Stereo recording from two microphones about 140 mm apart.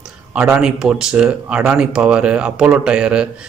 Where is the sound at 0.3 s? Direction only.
5° right (ahead or behind).